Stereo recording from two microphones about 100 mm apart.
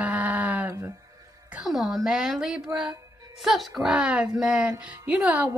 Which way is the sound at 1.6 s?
5° right (ahead or behind).